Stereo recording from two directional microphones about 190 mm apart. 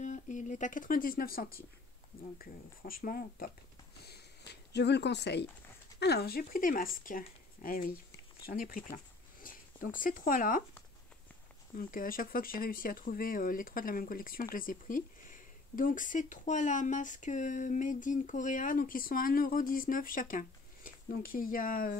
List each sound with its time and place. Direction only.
0.0 s speech: 40° left (ahead or behind)
4.7 s speech: 65° left (ahead or behind); by 8.8 s 45° left (ahead or behind)
8.9 s a sound: 45° left (ahead or behind)
11.7 s speech: 45° left (ahead or behind)